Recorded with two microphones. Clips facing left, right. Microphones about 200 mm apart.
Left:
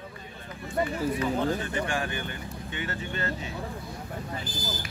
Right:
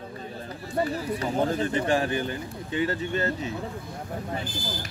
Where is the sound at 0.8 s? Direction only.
35° right (ahead or behind).